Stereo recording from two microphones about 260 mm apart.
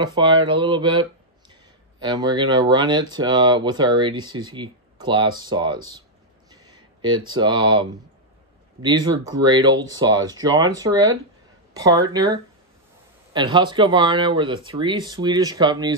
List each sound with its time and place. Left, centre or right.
0.0 s speech: centre